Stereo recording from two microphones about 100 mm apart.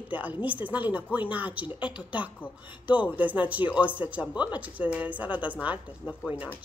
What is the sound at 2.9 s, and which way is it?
Speech, 15° right (ahead or behind).